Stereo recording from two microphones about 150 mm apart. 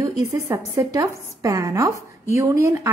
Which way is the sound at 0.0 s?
20° right (ahead or behind).